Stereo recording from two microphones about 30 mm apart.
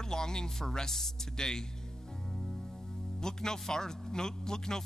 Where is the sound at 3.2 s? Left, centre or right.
Centre.